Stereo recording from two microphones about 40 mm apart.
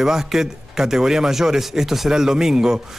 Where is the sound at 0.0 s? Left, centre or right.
Centre.